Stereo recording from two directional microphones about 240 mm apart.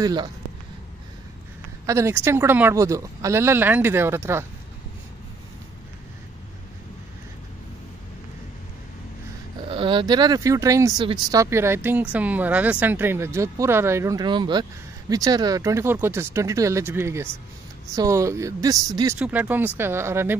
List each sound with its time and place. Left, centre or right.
0.0 s speech: centre
1.9 s speech: centre
9.7 s speech: right